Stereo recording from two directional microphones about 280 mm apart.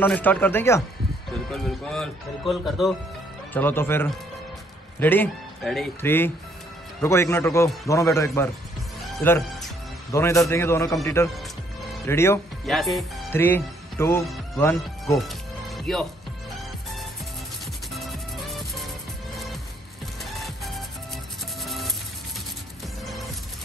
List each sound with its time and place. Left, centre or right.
0.0 s a man's voice: centre
9.0 s music: centre
10.1 s a man's voice: centre
17.9 s music: centre